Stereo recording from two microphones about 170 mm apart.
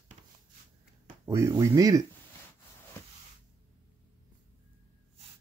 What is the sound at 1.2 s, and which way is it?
Speech, 15° right (ahead or behind).